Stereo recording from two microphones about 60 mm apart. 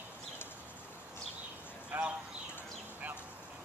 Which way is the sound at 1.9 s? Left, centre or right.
Right.